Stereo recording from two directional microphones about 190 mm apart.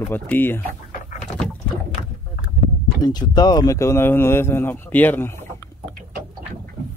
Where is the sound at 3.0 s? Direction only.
20° left (ahead or behind).